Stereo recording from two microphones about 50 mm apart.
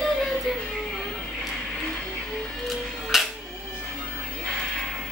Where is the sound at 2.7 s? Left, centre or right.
Centre.